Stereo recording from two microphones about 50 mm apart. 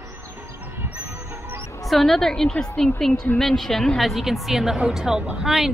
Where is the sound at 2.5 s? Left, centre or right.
Left.